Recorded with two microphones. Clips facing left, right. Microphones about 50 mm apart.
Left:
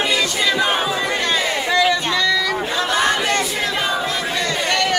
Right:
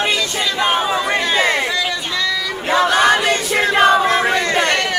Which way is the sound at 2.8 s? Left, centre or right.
Right.